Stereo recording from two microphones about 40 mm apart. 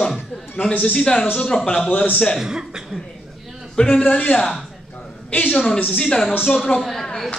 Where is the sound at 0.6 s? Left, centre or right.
Left.